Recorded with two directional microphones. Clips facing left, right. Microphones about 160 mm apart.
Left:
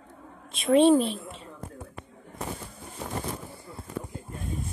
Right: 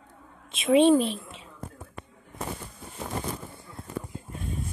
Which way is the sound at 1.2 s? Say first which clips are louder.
Left 4 dB; centre (ahead or behind).